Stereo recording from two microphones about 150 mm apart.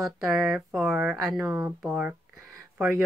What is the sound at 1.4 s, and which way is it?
Speech, 15° right (ahead or behind).